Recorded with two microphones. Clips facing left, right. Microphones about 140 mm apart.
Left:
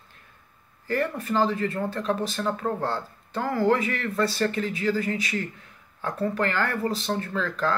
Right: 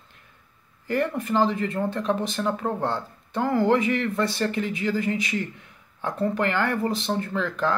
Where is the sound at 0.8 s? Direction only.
20° right (ahead or behind).